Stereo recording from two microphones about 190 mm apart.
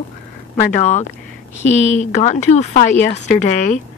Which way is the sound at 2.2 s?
35° left (ahead or behind).